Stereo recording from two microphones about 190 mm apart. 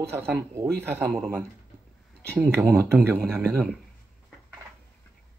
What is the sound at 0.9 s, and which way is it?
Speech, centre (ahead or behind).